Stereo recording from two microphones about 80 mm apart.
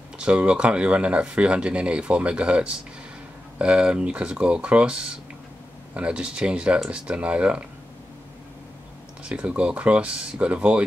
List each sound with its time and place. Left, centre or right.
0.2 s speech: centre
9.2 s speech: centre